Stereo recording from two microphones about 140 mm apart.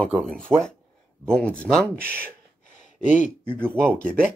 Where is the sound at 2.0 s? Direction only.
15° right (ahead or behind).